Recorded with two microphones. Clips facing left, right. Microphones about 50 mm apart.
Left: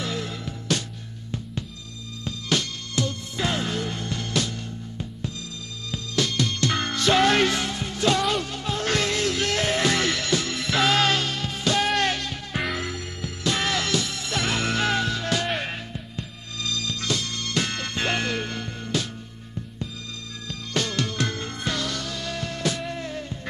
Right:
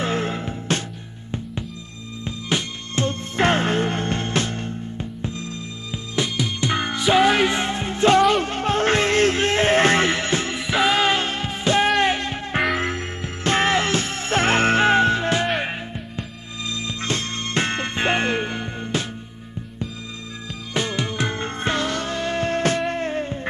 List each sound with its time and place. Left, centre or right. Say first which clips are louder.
0.0 s music: right 7 dB; right
2.2 s music: right 1 dB; right
3.1 s music: right 8 dB; right
6.1 s music: right 1 dB; centre
7.5 s music: right 4 dB; right
8.4 s music: right 7 dB; right
10.6 s music: right 3 dB; centre
15.4 s music: right 4 dB; centre
20.7 s music: right 2 dB; centre; by 23.4 s right